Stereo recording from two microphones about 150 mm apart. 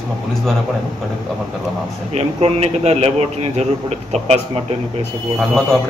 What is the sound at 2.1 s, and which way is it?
A man's voice, 45° right (ahead or behind).